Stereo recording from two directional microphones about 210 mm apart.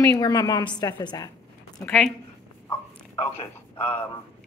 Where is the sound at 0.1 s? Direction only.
15° left (ahead or behind).